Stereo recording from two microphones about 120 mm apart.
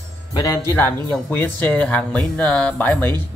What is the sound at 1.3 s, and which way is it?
Speech, 15° left (ahead or behind).